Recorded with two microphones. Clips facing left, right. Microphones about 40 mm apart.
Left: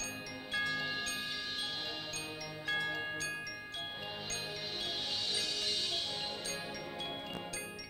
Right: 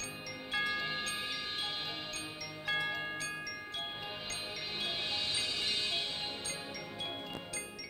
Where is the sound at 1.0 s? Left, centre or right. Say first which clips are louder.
Right 1 dB; centre.